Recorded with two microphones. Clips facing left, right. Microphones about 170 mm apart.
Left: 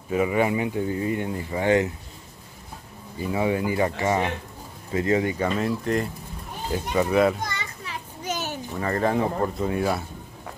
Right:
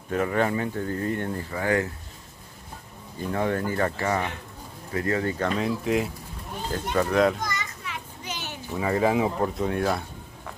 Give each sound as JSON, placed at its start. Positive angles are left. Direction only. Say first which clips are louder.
{"t": 0.1, "sound": "speech", "louder": "left 2 dB", "side_deg": 5}
{"t": 3.2, "sound": "speech", "louder": "left 2 dB", "side_deg": 5}
{"t": 5.6, "sound": "speech", "louder": "even", "side_deg": 0}
{"t": 7.4, "sound": "children playing", "louder": "right 1 dB", "side_deg": 30}
{"t": 8.7, "sound": "speech", "louder": "right 1 dB", "side_deg": -5}